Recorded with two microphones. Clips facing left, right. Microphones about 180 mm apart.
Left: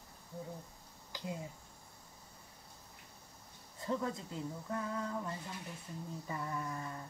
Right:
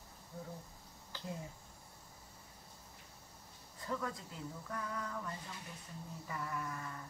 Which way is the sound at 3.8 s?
25° left (ahead or behind).